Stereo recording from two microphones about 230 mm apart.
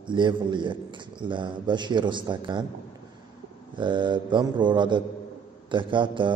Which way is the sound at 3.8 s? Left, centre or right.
Centre.